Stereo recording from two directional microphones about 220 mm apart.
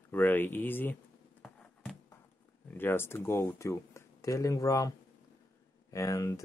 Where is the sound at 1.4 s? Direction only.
5° left (ahead or behind).